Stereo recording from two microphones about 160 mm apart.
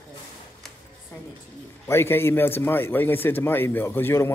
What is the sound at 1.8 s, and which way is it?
A man's voice, 15° left (ahead or behind).